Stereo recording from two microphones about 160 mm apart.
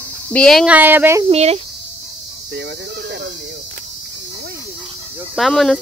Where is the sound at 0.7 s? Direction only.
10° right (ahead or behind).